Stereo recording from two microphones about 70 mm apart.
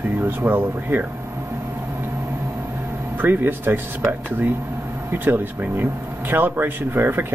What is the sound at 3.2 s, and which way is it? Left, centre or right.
Speech, right.